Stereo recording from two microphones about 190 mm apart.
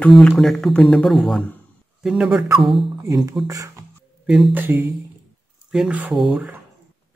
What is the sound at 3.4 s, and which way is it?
Speech, 15° right (ahead or behind).